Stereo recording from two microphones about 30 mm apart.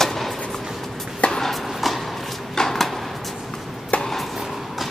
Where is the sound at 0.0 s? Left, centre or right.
Centre.